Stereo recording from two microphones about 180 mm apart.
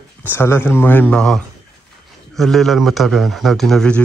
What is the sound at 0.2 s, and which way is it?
Speech, 10° left (ahead or behind).